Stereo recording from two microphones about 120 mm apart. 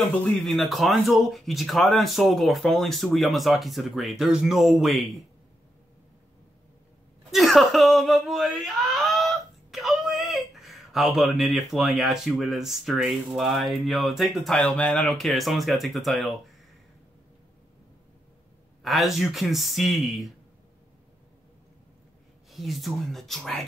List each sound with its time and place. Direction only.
0.4 s speech: centre (ahead or behind)
7.2 s speech: centre (ahead or behind)
14.6 s speech: 10° left (ahead or behind)
18.8 s speech: centre (ahead or behind)
22.5 s speech: centre (ahead or behind)